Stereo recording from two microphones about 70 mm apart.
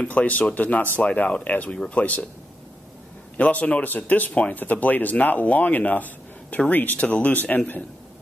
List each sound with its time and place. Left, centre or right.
0.0 s speech: left
3.3 s speech: centre